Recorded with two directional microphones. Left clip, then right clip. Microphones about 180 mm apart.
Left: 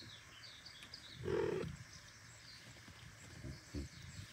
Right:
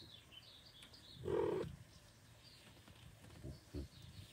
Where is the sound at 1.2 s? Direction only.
5° left (ahead or behind).